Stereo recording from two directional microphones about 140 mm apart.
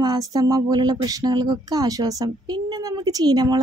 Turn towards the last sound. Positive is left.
turn(degrees=-30)  # may be behind; listen again after turning